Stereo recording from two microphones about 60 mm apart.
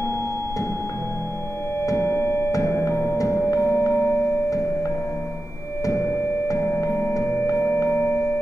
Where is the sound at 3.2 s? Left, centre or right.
Left.